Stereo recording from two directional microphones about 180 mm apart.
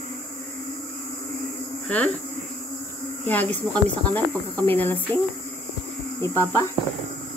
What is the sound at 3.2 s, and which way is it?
Speech, 10° left (ahead or behind).